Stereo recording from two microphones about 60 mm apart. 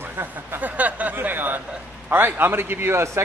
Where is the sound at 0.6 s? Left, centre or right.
Right.